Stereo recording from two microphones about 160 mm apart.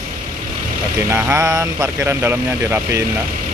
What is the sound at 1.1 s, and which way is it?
Speech, 15° right (ahead or behind).